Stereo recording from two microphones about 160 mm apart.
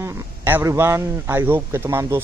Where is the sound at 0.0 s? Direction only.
15° right (ahead or behind).